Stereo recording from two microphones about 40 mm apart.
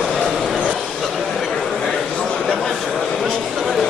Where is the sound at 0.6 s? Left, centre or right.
Centre.